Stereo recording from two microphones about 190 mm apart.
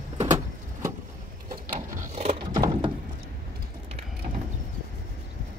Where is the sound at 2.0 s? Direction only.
35° right (ahead or behind).